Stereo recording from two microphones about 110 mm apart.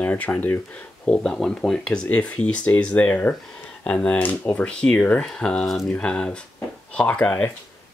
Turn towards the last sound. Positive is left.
turn(degrees=10)  # may be behind; listen again after turning